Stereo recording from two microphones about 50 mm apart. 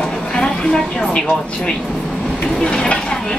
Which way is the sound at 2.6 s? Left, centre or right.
Centre.